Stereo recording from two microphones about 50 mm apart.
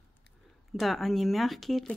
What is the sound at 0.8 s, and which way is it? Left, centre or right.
Speech, centre.